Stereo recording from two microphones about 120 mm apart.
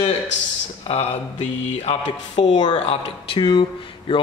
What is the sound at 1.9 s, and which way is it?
Speech, 65° left (ahead or behind).